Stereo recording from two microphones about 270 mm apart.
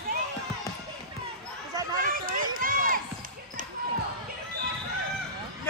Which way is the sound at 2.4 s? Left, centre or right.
Right.